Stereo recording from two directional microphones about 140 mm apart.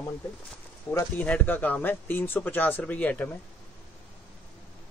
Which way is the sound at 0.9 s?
10° left (ahead or behind).